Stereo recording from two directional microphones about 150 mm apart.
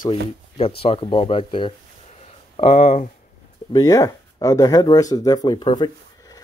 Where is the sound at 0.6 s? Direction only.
40° left (ahead or behind).